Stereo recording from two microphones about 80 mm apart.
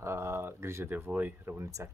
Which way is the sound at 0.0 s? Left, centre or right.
Right.